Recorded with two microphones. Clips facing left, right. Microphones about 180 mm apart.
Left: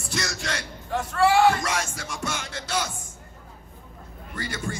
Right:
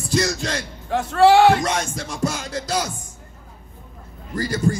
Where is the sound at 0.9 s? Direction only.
75° right (ahead or behind).